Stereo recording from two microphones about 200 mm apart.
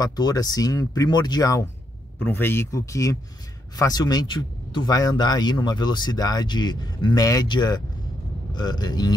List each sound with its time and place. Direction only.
0.0 s speech: 20° left (ahead or behind)